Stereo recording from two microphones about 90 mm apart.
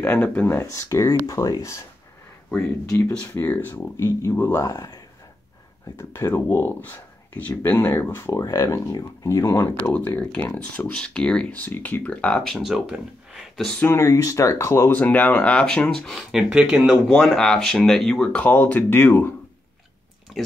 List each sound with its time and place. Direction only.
0.0 s speech: 20° left (ahead or behind)
0.7 s speech: 35° left (ahead or behind)
3.3 s speech: 25° left (ahead or behind)
4.6 s speech: 45° left (ahead or behind)
5.9 s speech: 30° left (ahead or behind)
8.4 s speech: 40° left (ahead or behind)
9.9 s speech: 20° left (ahead or behind)
12.6 s speech: 5° right (ahead or behind)
13.7 s speech: 25° left (ahead or behind)
14.9 s speech: 20° left (ahead or behind)
16.3 s speech: 10° right (ahead or behind)
18.3 s speech: 20° left (ahead or behind)